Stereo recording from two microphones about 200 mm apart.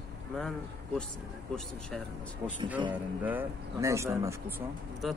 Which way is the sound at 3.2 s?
10° right (ahead or behind).